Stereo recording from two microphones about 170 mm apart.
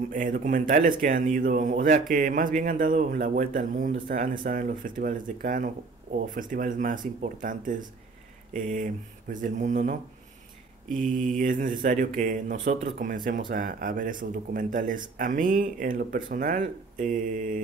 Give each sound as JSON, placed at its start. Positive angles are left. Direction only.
{"t": 0.1, "sound": "speech", "side_deg": -50}